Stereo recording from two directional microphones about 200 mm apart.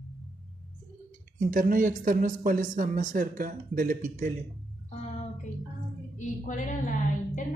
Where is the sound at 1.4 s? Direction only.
45° right (ahead or behind).